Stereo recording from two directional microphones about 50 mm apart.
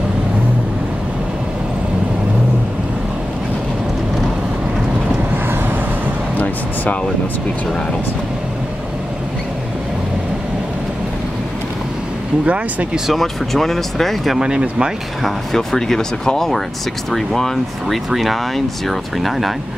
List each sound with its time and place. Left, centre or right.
5.5 s vehicle: right
6.3 s a sound: left
12.4 s speech: right
13.1 s speech: centre
14.4 s speech: centre
15.2 s speech: centre